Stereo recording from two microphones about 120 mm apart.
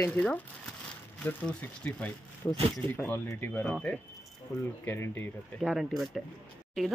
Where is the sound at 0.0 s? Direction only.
10° left (ahead or behind).